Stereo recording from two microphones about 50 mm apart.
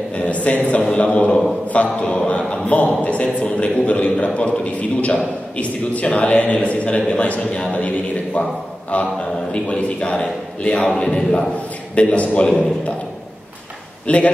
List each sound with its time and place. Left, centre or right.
0.1 s a man's voice: left
12.4 s a man's voice: centre
14.0 s a man's voice: left